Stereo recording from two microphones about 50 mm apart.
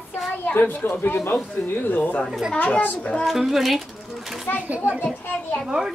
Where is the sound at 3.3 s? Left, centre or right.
Centre.